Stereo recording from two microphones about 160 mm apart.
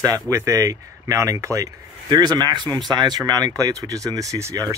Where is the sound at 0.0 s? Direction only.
20° right (ahead or behind).